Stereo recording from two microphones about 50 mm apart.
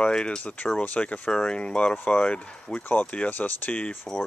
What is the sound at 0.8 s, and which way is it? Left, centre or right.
Speech, left.